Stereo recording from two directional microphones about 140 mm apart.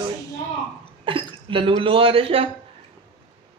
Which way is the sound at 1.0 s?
40° right (ahead or behind).